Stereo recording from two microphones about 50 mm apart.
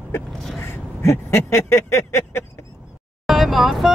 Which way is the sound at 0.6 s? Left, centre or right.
Left.